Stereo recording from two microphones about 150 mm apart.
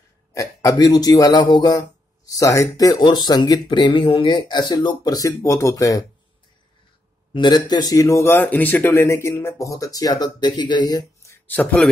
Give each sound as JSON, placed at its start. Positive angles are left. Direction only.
{"t": 0.3, "sound": "speech", "side_deg": 20}
{"t": 7.3, "sound": "speech", "side_deg": 30}
{"t": 11.4, "sound": "a man's voice", "side_deg": 10}